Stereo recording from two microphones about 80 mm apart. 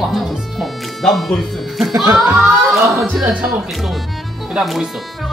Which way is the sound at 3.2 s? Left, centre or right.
Centre.